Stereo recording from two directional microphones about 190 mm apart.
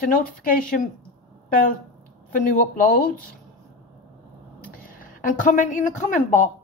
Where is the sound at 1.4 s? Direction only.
45° left (ahead or behind).